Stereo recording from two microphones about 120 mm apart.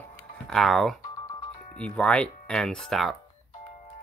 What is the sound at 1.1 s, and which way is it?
Music, 35° left (ahead or behind).